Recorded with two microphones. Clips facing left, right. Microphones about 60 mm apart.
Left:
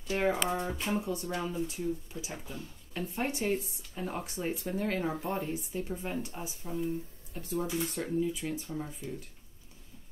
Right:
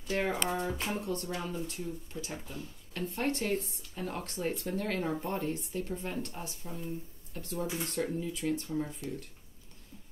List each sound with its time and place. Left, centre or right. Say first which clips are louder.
0.1 s speech: left 2 dB; centre